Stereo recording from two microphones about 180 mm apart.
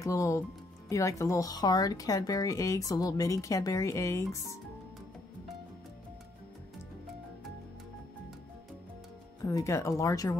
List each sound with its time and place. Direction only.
0.0 s speech: 15° left (ahead or behind)
9.4 s speech: 20° left (ahead or behind)